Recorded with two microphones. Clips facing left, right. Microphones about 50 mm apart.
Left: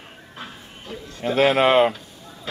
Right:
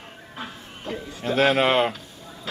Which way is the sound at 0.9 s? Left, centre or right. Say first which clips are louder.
Right 4 dB; right.